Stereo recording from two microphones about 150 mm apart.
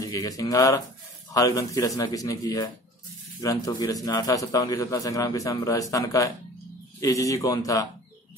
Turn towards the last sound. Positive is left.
turn(degrees=20)  # may be behind; listen again after turning